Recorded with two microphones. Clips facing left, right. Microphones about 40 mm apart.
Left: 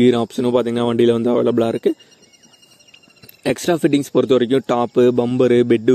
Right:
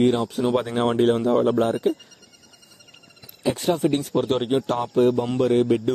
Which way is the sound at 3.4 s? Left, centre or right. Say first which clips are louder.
Left 4 dB; left.